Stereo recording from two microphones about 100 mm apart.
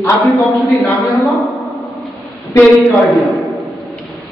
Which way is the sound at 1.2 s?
Centre (ahead or behind).